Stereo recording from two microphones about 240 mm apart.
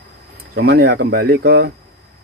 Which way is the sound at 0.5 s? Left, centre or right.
Right.